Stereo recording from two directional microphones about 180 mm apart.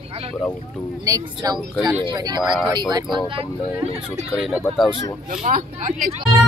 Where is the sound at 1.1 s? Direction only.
20° right (ahead or behind).